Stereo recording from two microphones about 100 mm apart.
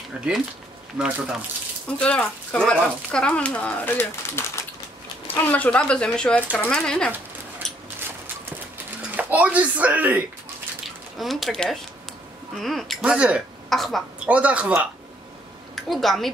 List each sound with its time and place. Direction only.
0.2 s speech: 10° right (ahead or behind)
2.0 s speech: 10° left (ahead or behind)
7.6 s a sound: 5° left (ahead or behind)
9.1 s speech: 15° right (ahead or behind)
11.1 s speech: centre (ahead or behind)
13.0 s speech: 10° right (ahead or behind)
13.7 s a woman's voice: centre (ahead or behind)
14.2 s speech: 15° right (ahead or behind)
15.7 s a woman's voice: centre (ahead or behind)